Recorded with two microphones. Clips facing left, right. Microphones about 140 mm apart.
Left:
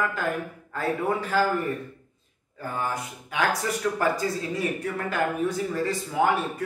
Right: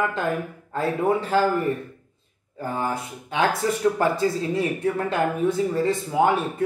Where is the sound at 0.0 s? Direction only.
25° right (ahead or behind).